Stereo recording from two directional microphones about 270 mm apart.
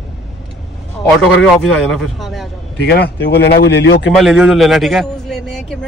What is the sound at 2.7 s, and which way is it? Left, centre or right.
A man's voice, left.